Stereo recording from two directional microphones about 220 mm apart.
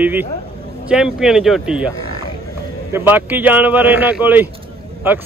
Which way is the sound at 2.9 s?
10° right (ahead or behind).